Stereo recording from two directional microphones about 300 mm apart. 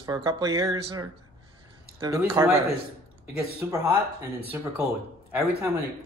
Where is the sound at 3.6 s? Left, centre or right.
Centre.